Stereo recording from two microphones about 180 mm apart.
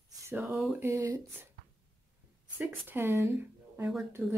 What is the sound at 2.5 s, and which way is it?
Speech, 10° right (ahead or behind).